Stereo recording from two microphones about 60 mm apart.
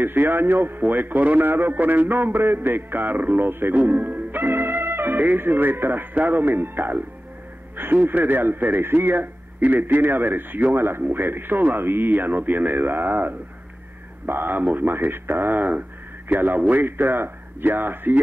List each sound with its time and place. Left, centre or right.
0.0 s speech: right